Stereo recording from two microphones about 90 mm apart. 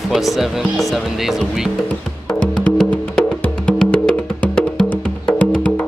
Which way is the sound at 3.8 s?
10° left (ahead or behind).